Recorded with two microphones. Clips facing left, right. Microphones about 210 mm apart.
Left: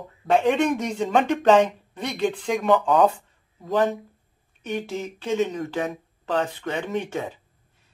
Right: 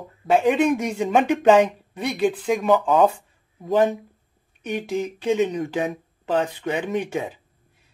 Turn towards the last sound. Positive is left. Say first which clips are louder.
# right 3 dB
turn(degrees=-10)  # may be behind; listen again after turning